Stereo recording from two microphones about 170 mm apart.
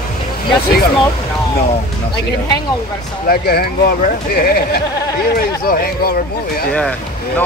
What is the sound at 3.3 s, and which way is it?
Speech, 65° left (ahead or behind).